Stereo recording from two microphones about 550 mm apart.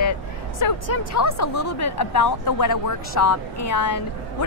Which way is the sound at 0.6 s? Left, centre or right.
Left.